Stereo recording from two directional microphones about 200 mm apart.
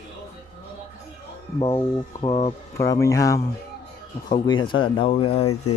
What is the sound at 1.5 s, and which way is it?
Speech, 25° left (ahead or behind).